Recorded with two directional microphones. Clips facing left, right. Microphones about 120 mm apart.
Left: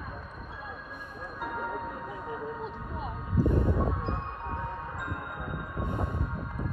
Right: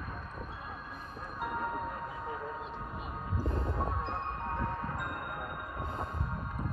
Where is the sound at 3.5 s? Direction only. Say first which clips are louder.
Left 8 dB; 65° left (ahead or behind).